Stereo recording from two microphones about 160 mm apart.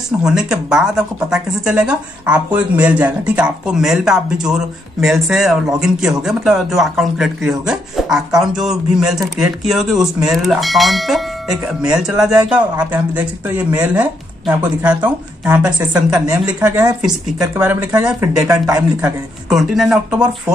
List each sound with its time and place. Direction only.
0.2 s speech: 5° right (ahead or behind)
15.8 s speech: 20° right (ahead or behind)
16.5 s speech: 10° right (ahead or behind)